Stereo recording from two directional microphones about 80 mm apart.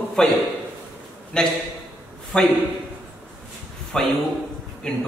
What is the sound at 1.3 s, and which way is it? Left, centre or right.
A man's voice, centre.